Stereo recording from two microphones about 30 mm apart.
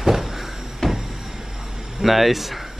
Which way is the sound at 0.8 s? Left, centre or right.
Centre.